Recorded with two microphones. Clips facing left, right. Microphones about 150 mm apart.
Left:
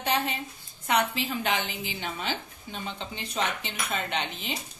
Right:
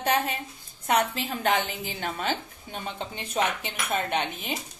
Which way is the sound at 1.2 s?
55° right (ahead or behind).